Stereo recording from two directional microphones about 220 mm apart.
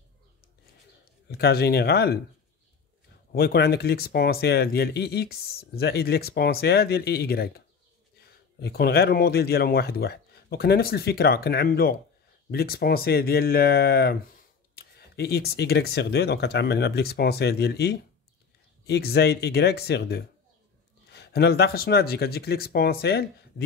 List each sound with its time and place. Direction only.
1.3 s speech: 45° left (ahead or behind)
3.3 s speech: 45° left (ahead or behind)